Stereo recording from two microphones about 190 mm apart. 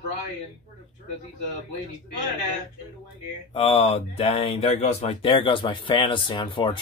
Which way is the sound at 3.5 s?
30° left (ahead or behind).